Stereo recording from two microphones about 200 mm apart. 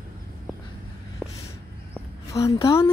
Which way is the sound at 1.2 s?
Centre (ahead or behind).